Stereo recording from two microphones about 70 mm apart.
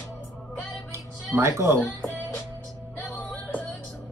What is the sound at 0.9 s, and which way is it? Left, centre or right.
Music, right.